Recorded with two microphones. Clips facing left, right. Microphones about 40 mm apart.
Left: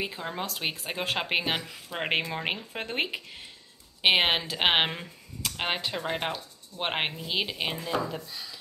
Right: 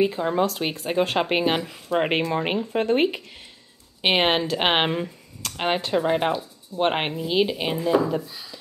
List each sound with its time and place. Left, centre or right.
0.0 s speech: centre